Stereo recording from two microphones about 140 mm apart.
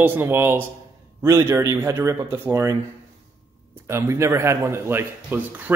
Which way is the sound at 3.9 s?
20° right (ahead or behind).